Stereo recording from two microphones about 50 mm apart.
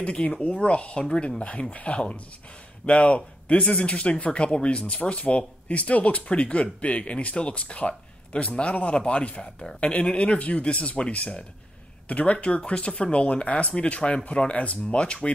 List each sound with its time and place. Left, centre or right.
0.0 s speech: left